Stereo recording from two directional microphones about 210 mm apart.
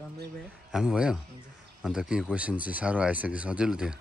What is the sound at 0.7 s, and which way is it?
Speech, 5° right (ahead or behind).